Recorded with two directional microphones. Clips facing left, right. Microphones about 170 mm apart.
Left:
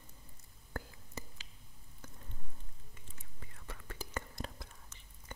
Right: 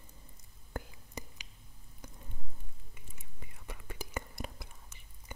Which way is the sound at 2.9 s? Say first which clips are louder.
Right 1 dB; 10° right (ahead or behind).